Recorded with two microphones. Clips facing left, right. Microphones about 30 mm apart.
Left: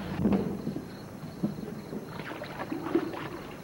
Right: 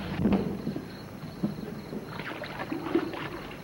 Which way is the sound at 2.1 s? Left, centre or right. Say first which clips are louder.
Right 3 dB; right.